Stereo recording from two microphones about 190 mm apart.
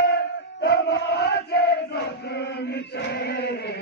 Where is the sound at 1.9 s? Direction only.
60° left (ahead or behind).